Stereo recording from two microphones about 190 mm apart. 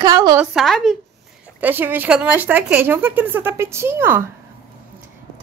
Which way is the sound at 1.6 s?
10° right (ahead or behind).